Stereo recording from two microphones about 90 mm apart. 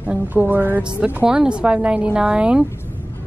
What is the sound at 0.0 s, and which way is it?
Music, 20° right (ahead or behind).